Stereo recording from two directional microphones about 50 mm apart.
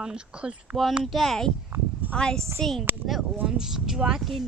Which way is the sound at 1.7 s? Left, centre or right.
Right.